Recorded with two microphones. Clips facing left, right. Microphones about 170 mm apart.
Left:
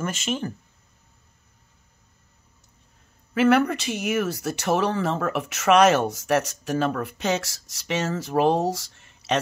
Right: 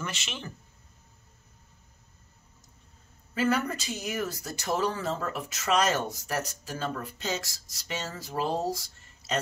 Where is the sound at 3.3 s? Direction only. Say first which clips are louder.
Left 8 dB; 70° left (ahead or behind).